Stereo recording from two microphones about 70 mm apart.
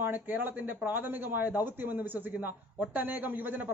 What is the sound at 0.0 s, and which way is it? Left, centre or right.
Speech, right.